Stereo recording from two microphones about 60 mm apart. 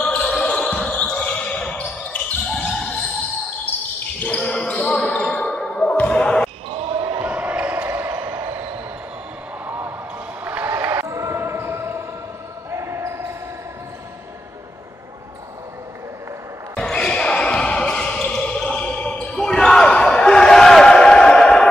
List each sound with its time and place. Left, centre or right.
0.3 s basketball bounce: centre
2.4 s basketball bounce: centre
4.2 s basketball bounce: centre
7.2 s basketball bounce: right
7.7 s a sound: right
9.7 s basketball bounce: right
10.4 s a sound: right
11.1 s basketball bounce: right
16.9 s basketball bounce: centre